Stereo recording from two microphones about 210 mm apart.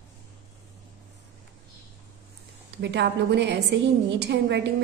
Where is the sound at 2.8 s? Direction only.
55° right (ahead or behind).